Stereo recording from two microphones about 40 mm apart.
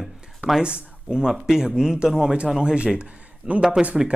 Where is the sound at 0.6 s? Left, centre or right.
Right.